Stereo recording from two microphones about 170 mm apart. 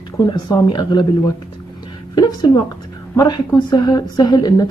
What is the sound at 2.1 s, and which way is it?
Speech, 25° left (ahead or behind).